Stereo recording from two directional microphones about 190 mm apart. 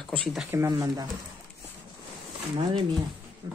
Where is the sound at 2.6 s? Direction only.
30° right (ahead or behind).